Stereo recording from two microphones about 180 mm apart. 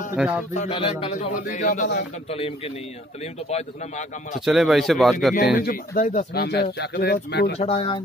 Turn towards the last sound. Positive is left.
turn(degrees=30)  # may be behind; listen again after turning